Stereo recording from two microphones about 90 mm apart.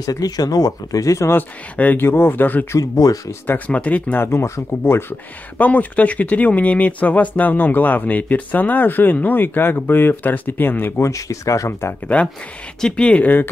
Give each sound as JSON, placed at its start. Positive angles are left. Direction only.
{"t": 0.0, "sound": "speech", "side_deg": 40}
{"t": 1.8, "sound": "speech", "side_deg": 20}
{"t": 2.8, "sound": "speech", "side_deg": 40}
{"t": 3.4, "sound": "speech", "side_deg": 15}
{"t": 5.6, "sound": "speech", "side_deg": 15}
{"t": 11.1, "sound": "speech", "side_deg": 35}
{"t": 12.1, "sound": "speech", "side_deg": 15}